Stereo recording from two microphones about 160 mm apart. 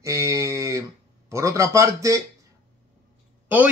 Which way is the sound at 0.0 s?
20° right (ahead or behind).